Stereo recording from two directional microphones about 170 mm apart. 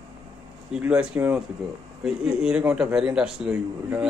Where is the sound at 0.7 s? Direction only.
5° right (ahead or behind).